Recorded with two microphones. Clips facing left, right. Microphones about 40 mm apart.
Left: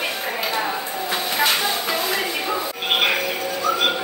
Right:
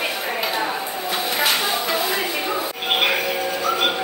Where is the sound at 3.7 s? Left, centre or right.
Centre.